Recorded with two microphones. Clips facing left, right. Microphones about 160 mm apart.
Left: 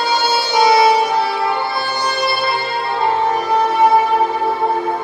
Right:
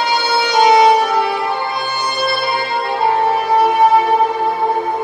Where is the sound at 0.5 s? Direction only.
15° right (ahead or behind).